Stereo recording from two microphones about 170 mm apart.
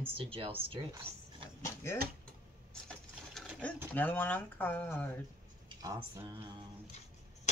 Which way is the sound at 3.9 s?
10° left (ahead or behind).